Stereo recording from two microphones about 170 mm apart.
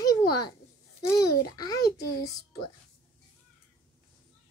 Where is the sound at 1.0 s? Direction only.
20° left (ahead or behind).